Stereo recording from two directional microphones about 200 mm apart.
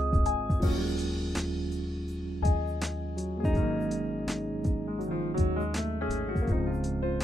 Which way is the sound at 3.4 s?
Centre (ahead or behind).